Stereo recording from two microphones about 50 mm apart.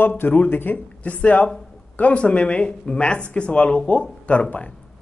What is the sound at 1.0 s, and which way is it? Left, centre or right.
Speech, left.